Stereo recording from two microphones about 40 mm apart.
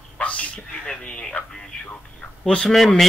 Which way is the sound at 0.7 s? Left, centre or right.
Left.